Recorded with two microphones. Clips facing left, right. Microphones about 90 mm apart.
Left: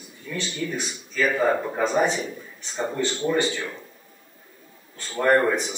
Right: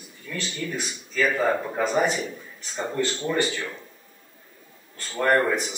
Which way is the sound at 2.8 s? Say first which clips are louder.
Left 1 dB; 15° left (ahead or behind).